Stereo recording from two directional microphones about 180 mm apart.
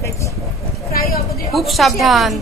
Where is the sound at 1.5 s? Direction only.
Centre (ahead or behind).